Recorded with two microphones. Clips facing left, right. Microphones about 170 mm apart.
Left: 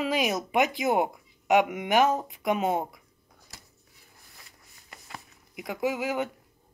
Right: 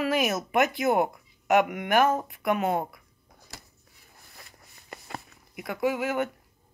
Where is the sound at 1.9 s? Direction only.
20° left (ahead or behind).